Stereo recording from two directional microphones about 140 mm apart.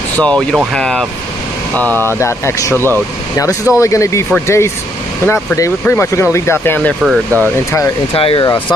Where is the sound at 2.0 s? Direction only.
20° left (ahead or behind).